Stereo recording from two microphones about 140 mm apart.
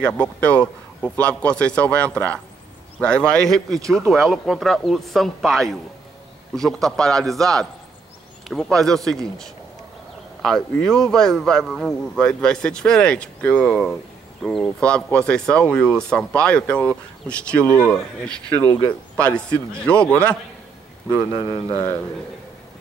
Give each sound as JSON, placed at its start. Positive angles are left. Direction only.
{"t": 0.0, "sound": "a man's voice", "side_deg": 10}
{"t": 21.3, "sound": "speech", "side_deg": 30}